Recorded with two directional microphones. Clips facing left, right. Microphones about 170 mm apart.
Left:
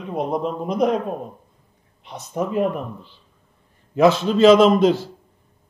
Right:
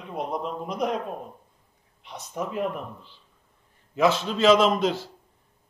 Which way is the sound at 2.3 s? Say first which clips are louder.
Left 7 dB; 45° left (ahead or behind).